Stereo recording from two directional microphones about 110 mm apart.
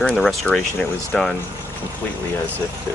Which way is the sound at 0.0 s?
5° left (ahead or behind).